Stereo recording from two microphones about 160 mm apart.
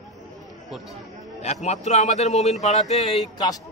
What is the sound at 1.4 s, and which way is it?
A man's voice, 45° left (ahead or behind).